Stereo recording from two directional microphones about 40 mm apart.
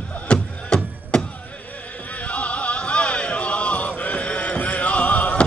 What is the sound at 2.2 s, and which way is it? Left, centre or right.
Music, left.